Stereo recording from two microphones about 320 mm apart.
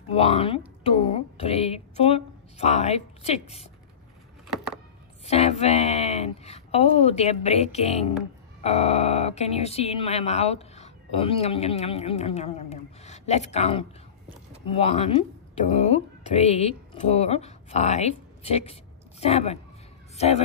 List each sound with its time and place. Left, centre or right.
0.1 s speech: centre
5.2 s a woman's voice: centre